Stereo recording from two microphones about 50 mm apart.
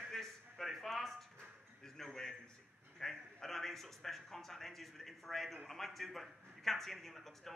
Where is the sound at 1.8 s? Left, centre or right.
Centre.